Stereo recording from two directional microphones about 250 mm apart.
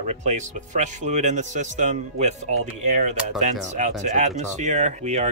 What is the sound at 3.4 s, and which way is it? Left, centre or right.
Speech, right.